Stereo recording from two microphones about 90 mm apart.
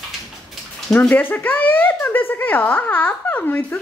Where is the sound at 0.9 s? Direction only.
15° left (ahead or behind).